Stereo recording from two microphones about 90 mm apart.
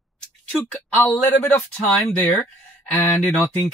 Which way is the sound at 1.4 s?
20° left (ahead or behind).